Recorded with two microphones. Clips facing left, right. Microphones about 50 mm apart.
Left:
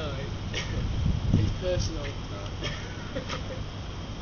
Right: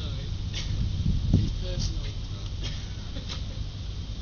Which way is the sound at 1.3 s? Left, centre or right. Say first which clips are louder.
Left 4 dB; left.